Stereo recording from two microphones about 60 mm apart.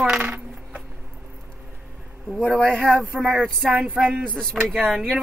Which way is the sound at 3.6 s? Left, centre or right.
Right.